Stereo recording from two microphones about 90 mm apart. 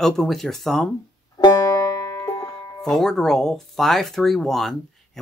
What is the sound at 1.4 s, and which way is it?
Banjo, 40° left (ahead or behind).